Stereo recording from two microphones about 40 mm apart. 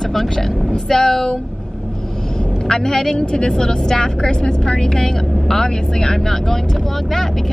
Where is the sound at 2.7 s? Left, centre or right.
Centre.